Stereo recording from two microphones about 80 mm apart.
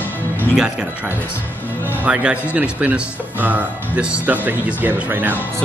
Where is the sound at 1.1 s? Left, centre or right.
Left.